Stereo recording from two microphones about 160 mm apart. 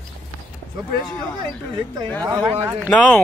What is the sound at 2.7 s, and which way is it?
Speech, 10° left (ahead or behind).